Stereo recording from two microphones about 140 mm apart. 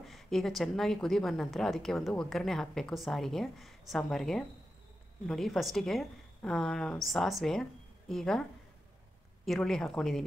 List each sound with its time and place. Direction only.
0.0 s a woman's voice: centre (ahead or behind)
9.5 s a woman's voice: 5° left (ahead or behind)